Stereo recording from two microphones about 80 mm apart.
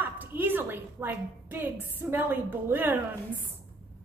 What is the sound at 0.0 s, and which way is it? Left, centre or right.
A woman's voice, right.